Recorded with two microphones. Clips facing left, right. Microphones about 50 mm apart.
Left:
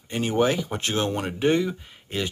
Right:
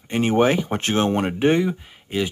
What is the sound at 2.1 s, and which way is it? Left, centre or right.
Speech, centre.